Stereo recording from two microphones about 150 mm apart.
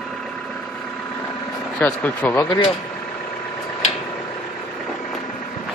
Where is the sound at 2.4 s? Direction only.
30° left (ahead or behind).